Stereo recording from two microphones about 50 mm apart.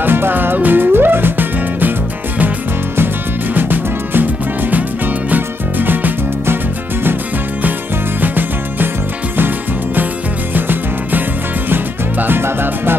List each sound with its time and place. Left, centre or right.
0.0 s music: right
3.5 s music: right
8.2 s music: right
10.5 s music: right